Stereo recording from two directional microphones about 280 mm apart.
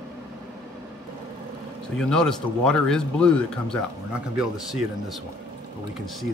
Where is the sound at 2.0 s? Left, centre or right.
Centre.